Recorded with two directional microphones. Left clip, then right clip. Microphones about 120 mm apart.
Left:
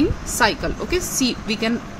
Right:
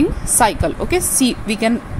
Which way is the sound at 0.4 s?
30° right (ahead or behind).